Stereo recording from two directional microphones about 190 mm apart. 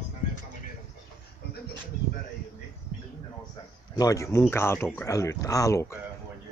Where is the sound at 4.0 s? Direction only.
15° left (ahead or behind).